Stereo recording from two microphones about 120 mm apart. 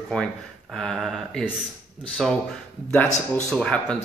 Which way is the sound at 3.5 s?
10° left (ahead or behind).